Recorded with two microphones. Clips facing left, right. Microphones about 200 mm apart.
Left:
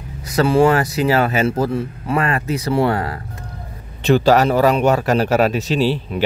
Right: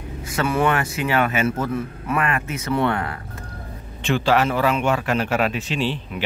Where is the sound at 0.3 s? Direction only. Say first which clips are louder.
Left 7 dB; 35° left (ahead or behind).